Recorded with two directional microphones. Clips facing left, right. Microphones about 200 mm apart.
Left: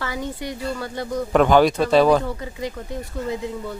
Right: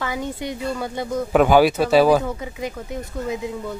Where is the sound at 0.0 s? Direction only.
20° right (ahead or behind).